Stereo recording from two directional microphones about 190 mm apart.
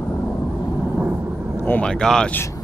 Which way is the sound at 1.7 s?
5° left (ahead or behind).